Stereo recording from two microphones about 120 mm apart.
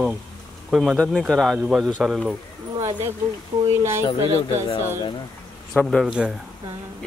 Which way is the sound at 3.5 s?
35° right (ahead or behind).